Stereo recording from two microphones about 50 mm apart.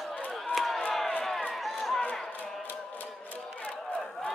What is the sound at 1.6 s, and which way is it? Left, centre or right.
Run, centre.